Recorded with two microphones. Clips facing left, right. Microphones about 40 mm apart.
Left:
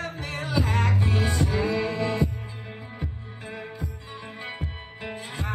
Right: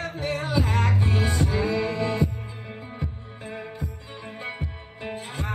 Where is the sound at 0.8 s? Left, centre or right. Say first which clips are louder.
Right 1 dB; right.